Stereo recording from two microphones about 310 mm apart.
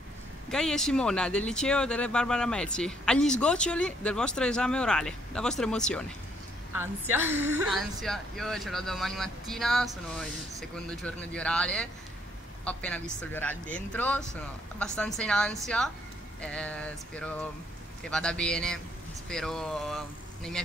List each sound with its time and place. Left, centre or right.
0.5 s speech: centre
6.7 s speech: centre
10.9 s speech: centre